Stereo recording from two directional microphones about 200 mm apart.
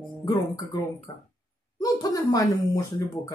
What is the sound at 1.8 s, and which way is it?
Speech, 15° left (ahead or behind).